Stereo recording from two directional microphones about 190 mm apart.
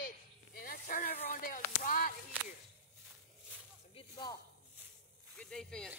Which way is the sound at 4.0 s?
25° left (ahead or behind).